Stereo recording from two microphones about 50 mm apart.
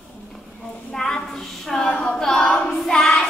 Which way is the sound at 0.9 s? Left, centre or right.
Centre.